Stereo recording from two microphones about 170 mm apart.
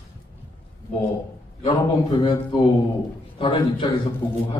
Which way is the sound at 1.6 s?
25° left (ahead or behind).